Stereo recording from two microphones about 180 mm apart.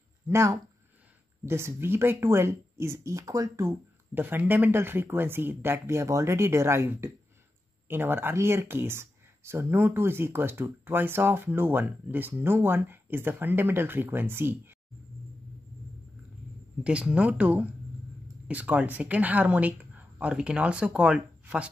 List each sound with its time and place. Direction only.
0.3 s speech: 15° right (ahead or behind)
16.8 s speech: 5° right (ahead or behind)